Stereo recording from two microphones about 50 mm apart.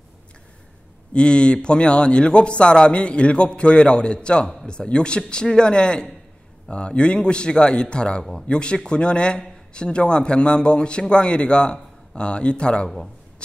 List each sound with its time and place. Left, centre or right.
1.1 s a man's voice: centre